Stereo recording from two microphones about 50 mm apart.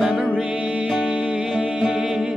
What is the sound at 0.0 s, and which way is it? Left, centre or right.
Music, centre.